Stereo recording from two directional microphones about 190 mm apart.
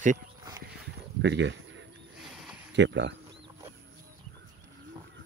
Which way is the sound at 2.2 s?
Centre (ahead or behind).